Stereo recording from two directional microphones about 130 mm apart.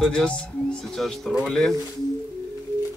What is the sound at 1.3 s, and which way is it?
Speech, centre (ahead or behind).